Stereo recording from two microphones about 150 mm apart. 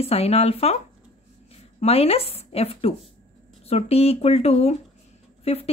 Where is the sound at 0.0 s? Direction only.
40° left (ahead or behind).